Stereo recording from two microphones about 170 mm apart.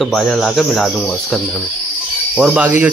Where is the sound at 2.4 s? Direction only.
10° right (ahead or behind).